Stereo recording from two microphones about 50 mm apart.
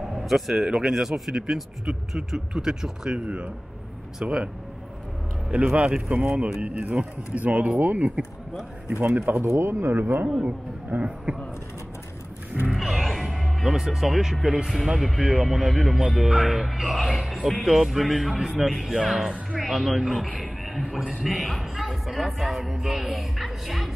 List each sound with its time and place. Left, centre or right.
0.1 s a man's voice: centre
4.2 s a man's voice: centre
5.5 s speech: right
9.5 s speech: right
9.9 s speech: right
12.7 s music: centre
14.9 s a man's voice: centre
20.3 s a sound: centre
21.2 s speech: centre